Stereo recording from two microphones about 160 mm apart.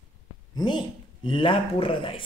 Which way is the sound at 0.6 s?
30° left (ahead or behind).